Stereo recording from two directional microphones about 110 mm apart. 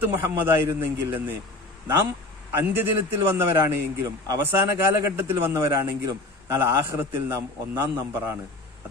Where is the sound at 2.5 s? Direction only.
20° right (ahead or behind).